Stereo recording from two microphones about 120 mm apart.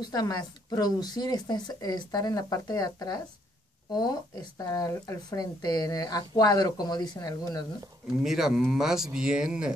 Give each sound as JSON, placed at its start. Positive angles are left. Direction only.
{"t": 0.0, "sound": "speech", "side_deg": 35}
{"t": 8.2, "sound": "speech", "side_deg": -5}